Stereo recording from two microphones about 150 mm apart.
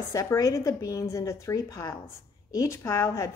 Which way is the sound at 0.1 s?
20° left (ahead or behind).